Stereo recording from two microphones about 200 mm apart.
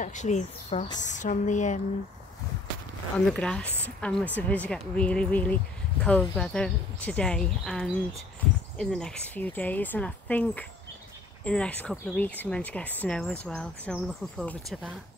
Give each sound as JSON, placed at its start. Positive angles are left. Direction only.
{"t": 0.0, "sound": "speech", "side_deg": 35}
{"t": 3.3, "sound": "speech", "side_deg": 5}